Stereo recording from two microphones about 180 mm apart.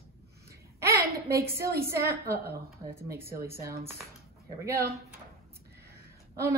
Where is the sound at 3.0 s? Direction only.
15° right (ahead or behind).